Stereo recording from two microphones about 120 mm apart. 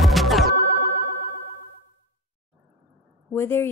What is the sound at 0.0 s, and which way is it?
Music, centre (ahead or behind).